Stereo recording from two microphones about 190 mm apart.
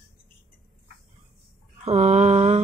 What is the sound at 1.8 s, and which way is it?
Speech, 35° right (ahead or behind).